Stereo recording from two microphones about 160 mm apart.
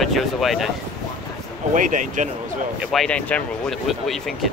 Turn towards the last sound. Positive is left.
turn(degrees=0)  # may be behind; listen again after turning